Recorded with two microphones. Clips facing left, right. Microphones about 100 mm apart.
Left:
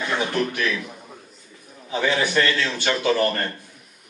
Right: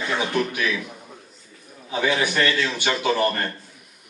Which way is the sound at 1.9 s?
10° right (ahead or behind).